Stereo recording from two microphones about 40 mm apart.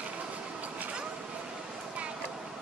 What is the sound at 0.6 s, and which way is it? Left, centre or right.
Vehicle, right.